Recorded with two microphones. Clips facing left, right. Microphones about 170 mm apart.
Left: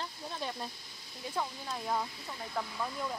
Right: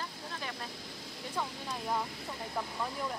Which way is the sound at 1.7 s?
5° right (ahead or behind).